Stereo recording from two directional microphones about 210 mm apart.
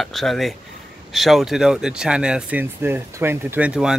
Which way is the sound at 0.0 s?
Centre (ahead or behind).